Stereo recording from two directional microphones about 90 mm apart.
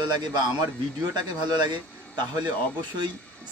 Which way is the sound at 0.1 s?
50° right (ahead or behind).